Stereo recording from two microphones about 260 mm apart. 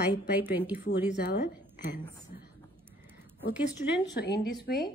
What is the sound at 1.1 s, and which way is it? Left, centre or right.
Speech, left.